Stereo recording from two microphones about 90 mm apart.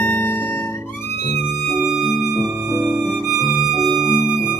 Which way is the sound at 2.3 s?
20° right (ahead or behind).